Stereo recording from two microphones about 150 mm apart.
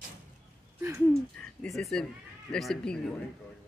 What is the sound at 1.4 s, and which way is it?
Speech, 5° left (ahead or behind).